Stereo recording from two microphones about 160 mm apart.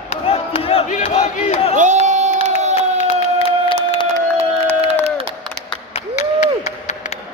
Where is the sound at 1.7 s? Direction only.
50° right (ahead or behind).